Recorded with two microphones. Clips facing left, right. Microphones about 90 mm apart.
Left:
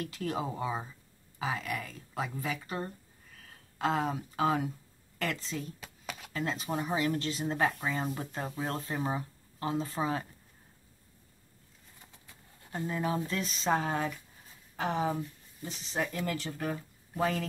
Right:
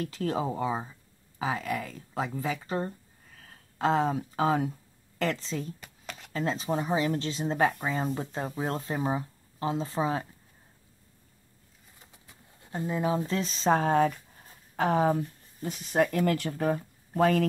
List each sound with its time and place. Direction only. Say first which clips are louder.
0.0 s speech: right 4 dB; 30° right (ahead or behind)
5.8 s a sound: left 1 dB; 5° left (ahead or behind)
6.3 s speech: right 5 dB; 30° right (ahead or behind)
12.3 s speech: right 3 dB; 20° right (ahead or behind); by 17.5 s 55° right (ahead or behind)